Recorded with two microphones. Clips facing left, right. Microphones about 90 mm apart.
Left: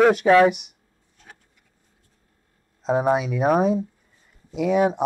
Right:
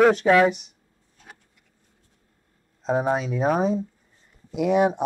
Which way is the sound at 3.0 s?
10° left (ahead or behind).